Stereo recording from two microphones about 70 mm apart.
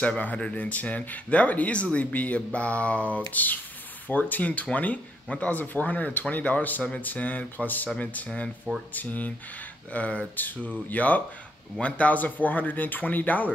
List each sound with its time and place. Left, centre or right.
0.0 s speech: left